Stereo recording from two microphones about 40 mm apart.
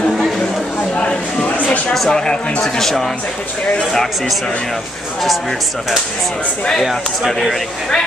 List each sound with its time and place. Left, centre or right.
0.9 s a sound: left
2.0 s speech: centre
2.6 s speech: centre